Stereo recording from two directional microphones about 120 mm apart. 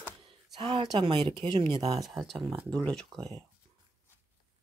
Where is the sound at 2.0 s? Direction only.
Centre (ahead or behind).